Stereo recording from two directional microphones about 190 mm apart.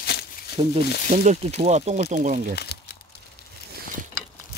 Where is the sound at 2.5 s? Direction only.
60° left (ahead or behind).